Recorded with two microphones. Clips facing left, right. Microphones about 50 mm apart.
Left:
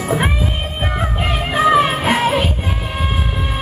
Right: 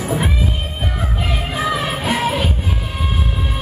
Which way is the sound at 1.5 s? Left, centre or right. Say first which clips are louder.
Left 9 dB; left.